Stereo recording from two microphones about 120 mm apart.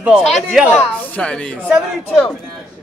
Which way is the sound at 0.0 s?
5° right (ahead or behind).